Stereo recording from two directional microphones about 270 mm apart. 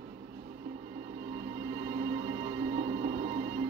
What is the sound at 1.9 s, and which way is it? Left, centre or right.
Music, right.